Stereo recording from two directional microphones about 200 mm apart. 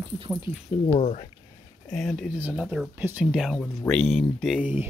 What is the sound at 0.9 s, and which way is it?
Speech, 35° left (ahead or behind).